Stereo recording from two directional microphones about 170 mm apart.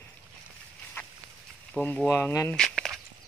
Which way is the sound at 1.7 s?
5° left (ahead or behind).